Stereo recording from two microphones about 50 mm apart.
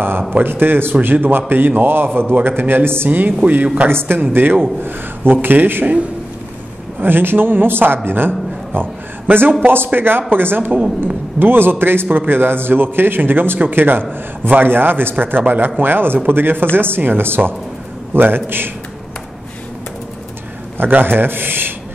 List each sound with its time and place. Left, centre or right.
0.3 s a man's voice: right
3.1 s speech: right
3.9 s a man's voice: right
7.0 s a man's voice: right
20.7 s a man's voice: right